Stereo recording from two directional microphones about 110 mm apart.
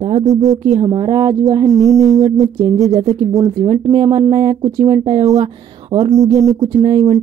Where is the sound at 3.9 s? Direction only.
45° right (ahead or behind).